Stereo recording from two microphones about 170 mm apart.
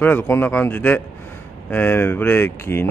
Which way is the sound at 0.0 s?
10° left (ahead or behind).